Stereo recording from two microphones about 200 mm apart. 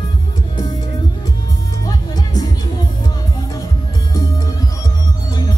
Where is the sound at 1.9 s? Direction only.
20° left (ahead or behind).